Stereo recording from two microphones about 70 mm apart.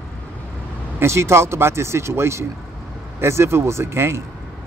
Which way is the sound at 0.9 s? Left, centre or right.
Right.